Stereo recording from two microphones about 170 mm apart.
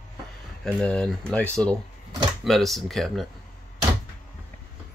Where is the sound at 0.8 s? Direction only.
5° left (ahead or behind).